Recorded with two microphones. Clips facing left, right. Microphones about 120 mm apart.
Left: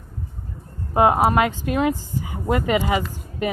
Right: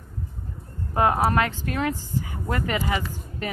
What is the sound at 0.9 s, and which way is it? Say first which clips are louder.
A woman's voice: left 4 dB; 20° left (ahead or behind).